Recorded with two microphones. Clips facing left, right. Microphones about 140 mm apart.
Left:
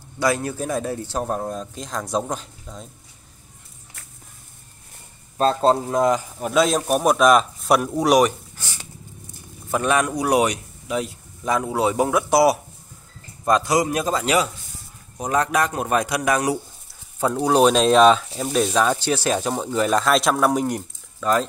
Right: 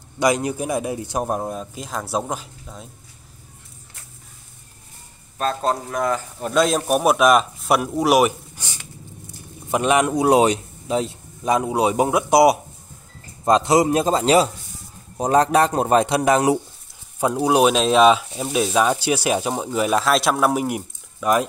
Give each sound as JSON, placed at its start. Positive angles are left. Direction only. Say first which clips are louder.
{"t": 0.2, "sound": "speech", "louder": "right 2 dB", "side_deg": -15}
{"t": 5.4, "sound": "speech", "louder": "left 4 dB", "side_deg": 30}
{"t": 6.4, "sound": "speech", "louder": "right 1 dB", "side_deg": 0}
{"t": 9.7, "sound": "speech", "louder": "right 2 dB", "side_deg": -20}
{"t": 17.2, "sound": "speech", "louder": "even", "side_deg": -10}